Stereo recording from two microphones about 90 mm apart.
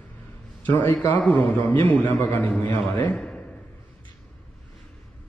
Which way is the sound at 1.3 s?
25° left (ahead or behind).